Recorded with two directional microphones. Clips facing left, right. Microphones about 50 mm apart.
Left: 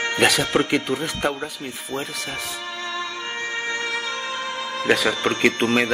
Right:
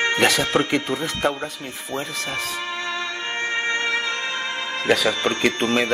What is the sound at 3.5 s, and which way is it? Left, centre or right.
Music, right.